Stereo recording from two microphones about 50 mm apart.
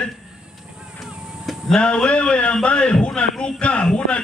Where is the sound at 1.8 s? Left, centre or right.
Left.